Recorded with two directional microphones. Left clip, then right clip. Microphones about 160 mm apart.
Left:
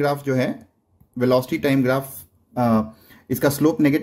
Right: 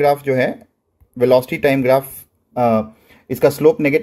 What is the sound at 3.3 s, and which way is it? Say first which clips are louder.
Speech: right 6 dB; 35° left (ahead or behind).